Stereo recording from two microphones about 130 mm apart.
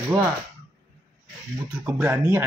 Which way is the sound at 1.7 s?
15° right (ahead or behind).